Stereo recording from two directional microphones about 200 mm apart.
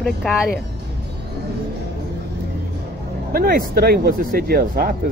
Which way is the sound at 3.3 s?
50° right (ahead or behind).